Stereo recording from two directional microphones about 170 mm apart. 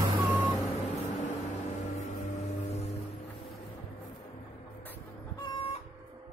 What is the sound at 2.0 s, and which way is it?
Music, 40° left (ahead or behind).